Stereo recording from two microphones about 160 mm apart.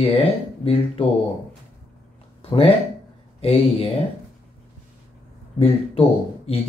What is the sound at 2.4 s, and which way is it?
Speech, 35° left (ahead or behind).